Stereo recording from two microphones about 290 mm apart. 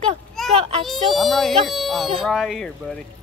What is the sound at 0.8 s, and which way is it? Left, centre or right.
Speech, centre.